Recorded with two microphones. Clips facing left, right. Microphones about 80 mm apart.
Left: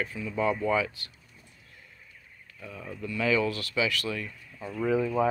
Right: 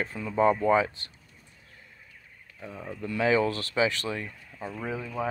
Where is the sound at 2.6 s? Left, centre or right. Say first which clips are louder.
Right 2 dB; right.